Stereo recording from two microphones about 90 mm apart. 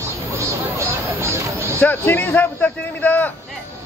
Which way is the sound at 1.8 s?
20° left (ahead or behind).